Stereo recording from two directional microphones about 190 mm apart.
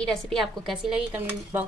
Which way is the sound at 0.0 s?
5° left (ahead or behind).